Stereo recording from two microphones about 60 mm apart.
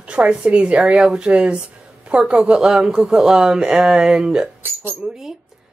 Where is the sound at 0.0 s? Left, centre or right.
Centre.